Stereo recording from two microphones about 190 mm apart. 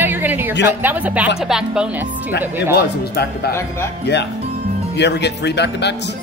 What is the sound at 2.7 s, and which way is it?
Speech, 55° left (ahead or behind).